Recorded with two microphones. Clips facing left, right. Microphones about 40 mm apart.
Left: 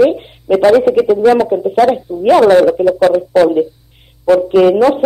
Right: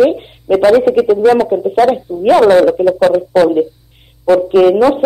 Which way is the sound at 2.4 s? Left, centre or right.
Right.